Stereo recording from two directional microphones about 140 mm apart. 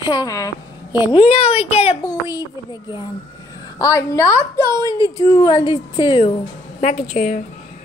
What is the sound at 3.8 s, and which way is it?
Speech, 25° left (ahead or behind).